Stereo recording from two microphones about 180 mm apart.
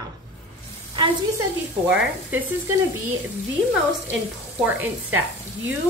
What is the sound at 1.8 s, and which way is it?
Speech, 10° right (ahead or behind).